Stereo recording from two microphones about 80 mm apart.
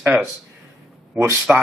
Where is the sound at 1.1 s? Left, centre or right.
Right.